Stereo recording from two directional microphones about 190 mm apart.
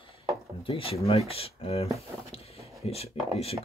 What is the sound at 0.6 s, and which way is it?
Speech, 30° left (ahead or behind).